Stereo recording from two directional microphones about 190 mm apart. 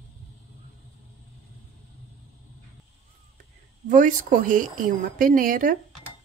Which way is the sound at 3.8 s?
45° right (ahead or behind).